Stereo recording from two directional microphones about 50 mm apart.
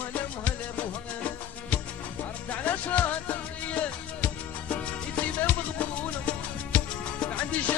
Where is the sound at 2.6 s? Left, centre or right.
Left.